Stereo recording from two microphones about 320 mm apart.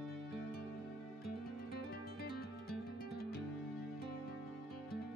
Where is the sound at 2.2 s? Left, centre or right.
Left.